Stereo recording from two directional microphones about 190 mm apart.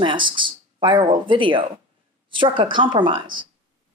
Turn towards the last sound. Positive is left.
turn(degrees=-25)  # may be behind; listen again after turning